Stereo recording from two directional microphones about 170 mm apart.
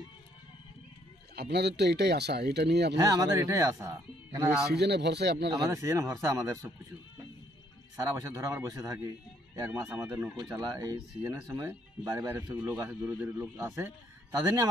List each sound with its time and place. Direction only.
1.3 s speech: 75° right (ahead or behind)
3.0 s speech: 20° right (ahead or behind)
4.7 s speech: 75° right (ahead or behind)
5.7 s speech: 20° right (ahead or behind)
7.9 s speech: 15° right (ahead or behind)